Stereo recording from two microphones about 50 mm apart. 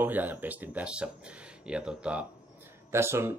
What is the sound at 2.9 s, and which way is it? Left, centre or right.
Speech, right.